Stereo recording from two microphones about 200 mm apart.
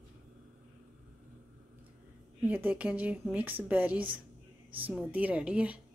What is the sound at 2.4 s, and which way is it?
A woman's voice, 10° right (ahead or behind).